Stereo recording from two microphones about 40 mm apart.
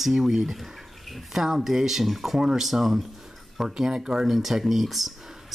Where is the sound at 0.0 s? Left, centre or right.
Centre.